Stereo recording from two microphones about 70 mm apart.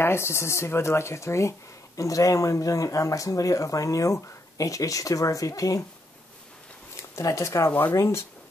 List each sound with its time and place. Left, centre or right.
0.0 s speech: left
7.0 s speech: left